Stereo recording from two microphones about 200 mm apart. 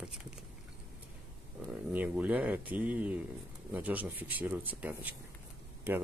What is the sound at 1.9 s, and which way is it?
Speech, 5° right (ahead or behind).